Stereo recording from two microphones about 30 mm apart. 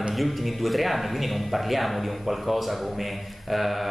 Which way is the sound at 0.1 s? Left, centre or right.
Centre.